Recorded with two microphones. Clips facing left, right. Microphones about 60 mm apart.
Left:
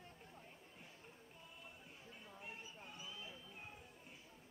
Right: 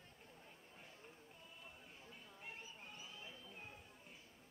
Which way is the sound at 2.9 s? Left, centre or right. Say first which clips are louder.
Left 2 dB; left.